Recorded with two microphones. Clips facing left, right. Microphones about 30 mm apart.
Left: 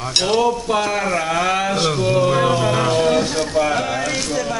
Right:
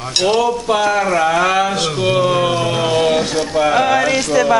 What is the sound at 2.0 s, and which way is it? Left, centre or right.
Speech, right.